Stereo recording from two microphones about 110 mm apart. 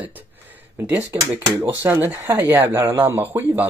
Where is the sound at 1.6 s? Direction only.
20° right (ahead or behind).